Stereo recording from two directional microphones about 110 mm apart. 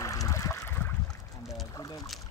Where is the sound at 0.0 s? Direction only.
30° left (ahead or behind).